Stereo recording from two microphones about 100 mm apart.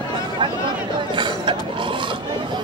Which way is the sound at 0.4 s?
50° right (ahead or behind).